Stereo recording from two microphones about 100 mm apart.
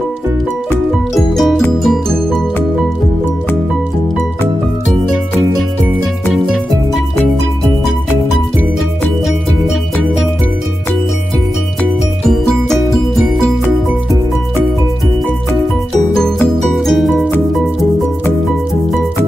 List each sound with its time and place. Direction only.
1.1 s music: centre (ahead or behind)
6.3 s music: centre (ahead or behind)
12.3 s music: 5° left (ahead or behind)
16.2 s music: 5° left (ahead or behind)